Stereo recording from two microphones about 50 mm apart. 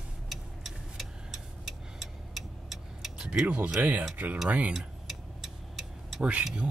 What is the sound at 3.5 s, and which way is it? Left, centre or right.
Speech, right.